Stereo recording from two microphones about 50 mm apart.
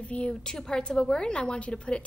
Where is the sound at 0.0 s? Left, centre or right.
Left.